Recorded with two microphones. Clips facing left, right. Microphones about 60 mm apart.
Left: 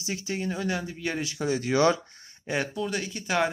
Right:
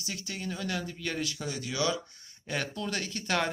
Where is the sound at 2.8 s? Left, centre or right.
Centre.